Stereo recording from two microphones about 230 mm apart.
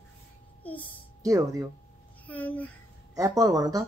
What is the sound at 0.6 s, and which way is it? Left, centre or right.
Speech, centre.